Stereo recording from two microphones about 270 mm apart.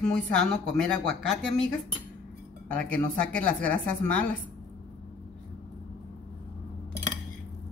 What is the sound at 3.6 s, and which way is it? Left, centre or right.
Speech, centre.